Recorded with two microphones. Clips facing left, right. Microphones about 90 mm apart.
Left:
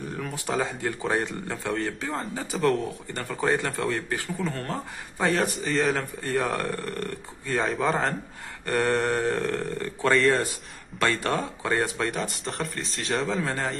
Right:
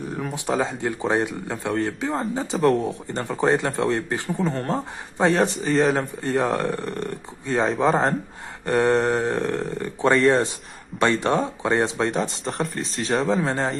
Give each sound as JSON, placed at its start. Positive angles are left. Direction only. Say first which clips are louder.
{"t": 0.1, "sound": "a sound", "louder": "right 5 dB", "side_deg": -15}
{"t": 0.5, "sound": "speech", "louder": "right 4 dB", "side_deg": -20}
{"t": 2.5, "sound": "speech", "louder": "right 4 dB", "side_deg": 0}
{"t": 2.8, "sound": "speech", "louder": "right 5 dB", "side_deg": -25}
{"t": 7.9, "sound": "speech", "louder": "right 5 dB", "side_deg": -35}
{"t": 8.6, "sound": "speech", "louder": "right 5 dB", "side_deg": -20}
{"t": 12.4, "sound": "speech", "louder": "right 5 dB", "side_deg": 0}
{"t": 13.4, "sound": "speech", "louder": "right 5 dB", "side_deg": -25}